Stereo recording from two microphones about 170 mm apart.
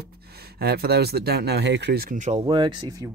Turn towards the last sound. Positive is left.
turn(degrees=-25)  # may be behind; listen again after turning